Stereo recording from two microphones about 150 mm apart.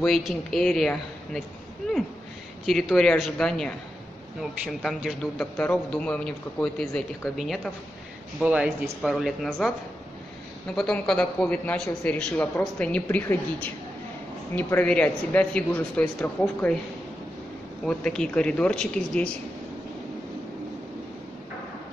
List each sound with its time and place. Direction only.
0.0 s speech: centre (ahead or behind)
2.6 s speech: centre (ahead or behind)
5.4 s a man's voice: 10° left (ahead or behind)
10.7 s a man's voice: 5° left (ahead or behind)
17.8 s a man's voice: 5° left (ahead or behind)